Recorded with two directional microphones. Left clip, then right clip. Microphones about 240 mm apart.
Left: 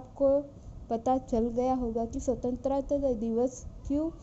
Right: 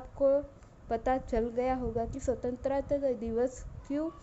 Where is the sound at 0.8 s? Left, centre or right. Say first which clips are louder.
Left 2 dB; centre.